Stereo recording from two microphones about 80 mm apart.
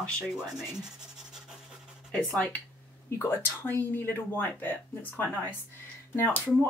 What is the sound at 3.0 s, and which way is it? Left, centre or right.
Speech, left.